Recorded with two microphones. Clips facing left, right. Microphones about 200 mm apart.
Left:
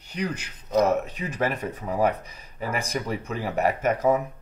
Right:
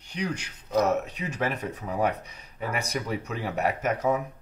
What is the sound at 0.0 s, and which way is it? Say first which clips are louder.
Speech: left 1 dB; 5° left (ahead or behind).